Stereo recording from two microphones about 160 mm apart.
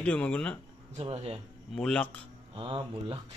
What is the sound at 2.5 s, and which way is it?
Speech, 30° right (ahead or behind).